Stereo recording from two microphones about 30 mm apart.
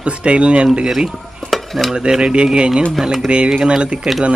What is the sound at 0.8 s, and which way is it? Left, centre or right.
Speech, centre.